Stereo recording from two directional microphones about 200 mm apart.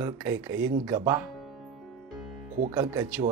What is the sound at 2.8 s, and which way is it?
Speech, 10° right (ahead or behind).